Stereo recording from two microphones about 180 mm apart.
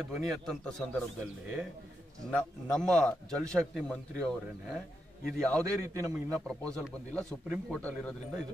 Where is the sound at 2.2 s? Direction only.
5° left (ahead or behind).